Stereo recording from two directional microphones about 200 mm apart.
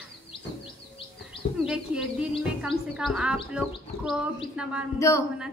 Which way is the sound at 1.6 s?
5° right (ahead or behind).